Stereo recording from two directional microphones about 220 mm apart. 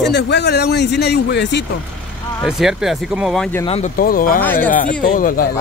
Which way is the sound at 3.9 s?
40° left (ahead or behind).